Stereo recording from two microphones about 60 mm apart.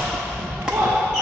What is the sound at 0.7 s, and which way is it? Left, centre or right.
Basketball bounce, centre.